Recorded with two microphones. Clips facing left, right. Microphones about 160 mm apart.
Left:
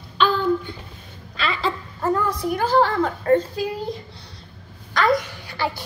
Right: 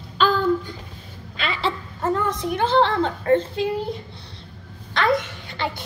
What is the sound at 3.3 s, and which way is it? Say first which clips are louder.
Speech: even; 25° right (ahead or behind).